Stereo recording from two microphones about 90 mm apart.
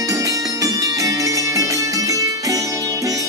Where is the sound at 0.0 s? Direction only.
40° right (ahead or behind).